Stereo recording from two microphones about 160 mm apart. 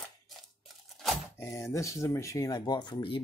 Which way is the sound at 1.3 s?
15° left (ahead or behind).